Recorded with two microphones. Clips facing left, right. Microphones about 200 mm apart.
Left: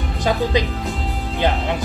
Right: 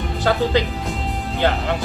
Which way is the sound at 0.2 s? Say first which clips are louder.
Right 1 dB; 15° left (ahead or behind).